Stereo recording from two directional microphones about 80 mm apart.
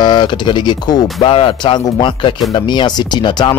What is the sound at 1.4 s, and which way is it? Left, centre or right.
Speech, left.